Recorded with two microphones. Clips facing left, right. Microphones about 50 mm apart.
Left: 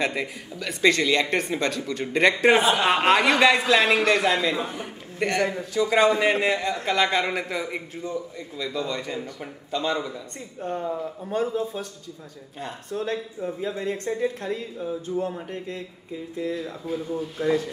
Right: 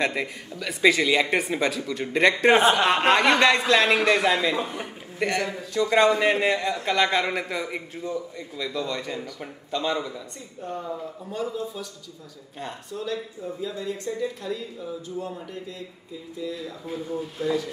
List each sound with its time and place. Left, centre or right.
0.0 s a man's voice: centre
10.6 s speech: left
12.9 s speech: left
16.8 s speech: centre
17.4 s speech: left